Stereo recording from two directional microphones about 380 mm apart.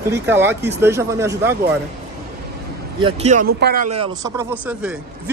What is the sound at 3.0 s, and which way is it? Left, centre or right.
Speech, centre.